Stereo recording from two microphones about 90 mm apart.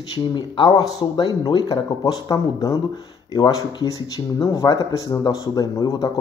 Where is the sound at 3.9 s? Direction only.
40° left (ahead or behind).